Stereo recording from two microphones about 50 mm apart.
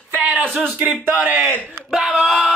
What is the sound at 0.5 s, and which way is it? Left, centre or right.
Speech, right.